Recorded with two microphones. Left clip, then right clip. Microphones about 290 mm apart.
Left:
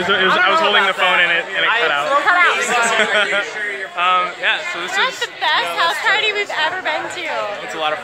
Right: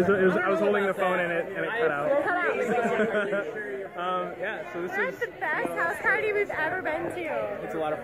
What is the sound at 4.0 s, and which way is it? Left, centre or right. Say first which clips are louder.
Speech: left 14 dB; centre.